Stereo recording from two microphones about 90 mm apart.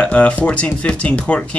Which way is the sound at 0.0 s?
15° left (ahead or behind).